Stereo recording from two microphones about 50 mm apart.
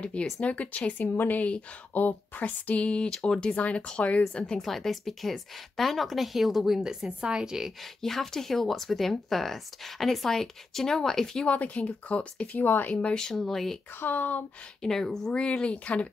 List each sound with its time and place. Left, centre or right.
0.0 s speech: left
1.1 s speech: left; by 4.6 s centre
4.6 s speech: centre
8.0 s speech: centre
11.4 s speech: left
12.5 s speech: left
12.9 s speech: centre
13.3 s speech: centre
13.9 s speech: left
14.8 s speech: centre; by 16.1 s left